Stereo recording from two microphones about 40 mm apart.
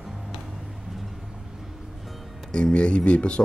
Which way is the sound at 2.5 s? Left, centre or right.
Left.